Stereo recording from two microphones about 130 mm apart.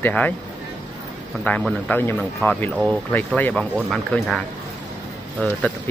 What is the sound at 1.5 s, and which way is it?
Speech, 15° left (ahead or behind).